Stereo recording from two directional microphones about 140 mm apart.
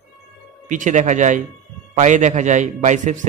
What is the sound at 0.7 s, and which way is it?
A man's voice, 65° right (ahead or behind).